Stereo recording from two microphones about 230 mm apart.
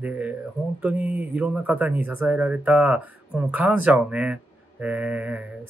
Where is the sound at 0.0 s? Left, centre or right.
Centre.